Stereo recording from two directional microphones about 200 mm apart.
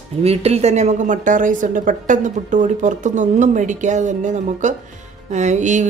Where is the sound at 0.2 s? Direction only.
30° right (ahead or behind).